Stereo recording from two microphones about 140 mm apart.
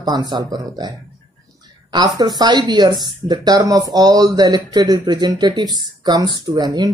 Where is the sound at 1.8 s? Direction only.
30° right (ahead or behind).